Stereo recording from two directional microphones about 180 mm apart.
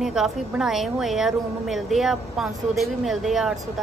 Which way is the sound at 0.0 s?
Centre (ahead or behind).